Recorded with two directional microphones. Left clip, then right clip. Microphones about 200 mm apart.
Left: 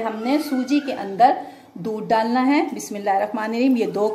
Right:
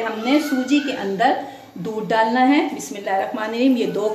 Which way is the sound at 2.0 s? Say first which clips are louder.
Right 2 dB; 50° left (ahead or behind).